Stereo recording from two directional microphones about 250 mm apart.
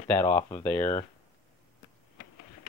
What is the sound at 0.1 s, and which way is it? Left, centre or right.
Speech, centre.